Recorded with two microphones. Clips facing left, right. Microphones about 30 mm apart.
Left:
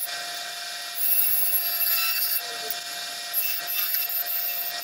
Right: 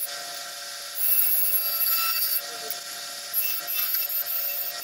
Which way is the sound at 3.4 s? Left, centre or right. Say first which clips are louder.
Left 1 dB; centre.